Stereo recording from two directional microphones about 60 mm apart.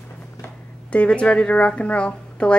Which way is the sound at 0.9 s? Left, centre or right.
Centre.